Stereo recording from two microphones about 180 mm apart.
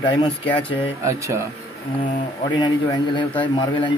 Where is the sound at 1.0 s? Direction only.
15° right (ahead or behind).